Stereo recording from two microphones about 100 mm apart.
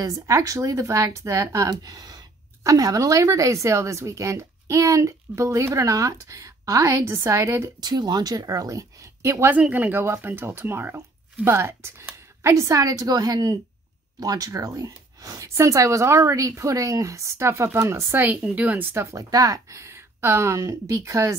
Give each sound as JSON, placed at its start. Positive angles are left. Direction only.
{"t": 0.0, "sound": "speech", "side_deg": -35}
{"t": 7.8, "sound": "a woman's voice", "side_deg": -45}
{"t": 18.9, "sound": "a woman's voice", "side_deg": -35}